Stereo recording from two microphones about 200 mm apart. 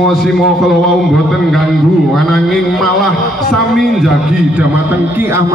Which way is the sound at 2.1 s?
Centre (ahead or behind).